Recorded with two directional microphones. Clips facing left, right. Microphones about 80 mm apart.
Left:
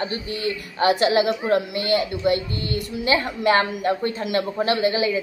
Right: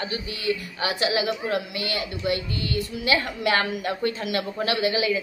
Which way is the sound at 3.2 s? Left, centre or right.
Left.